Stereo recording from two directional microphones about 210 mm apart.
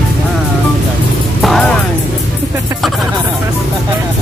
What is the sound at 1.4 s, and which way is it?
Music, centre (ahead or behind).